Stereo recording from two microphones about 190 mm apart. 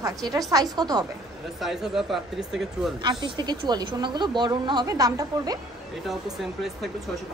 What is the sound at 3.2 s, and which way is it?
A woman's voice, 20° right (ahead or behind).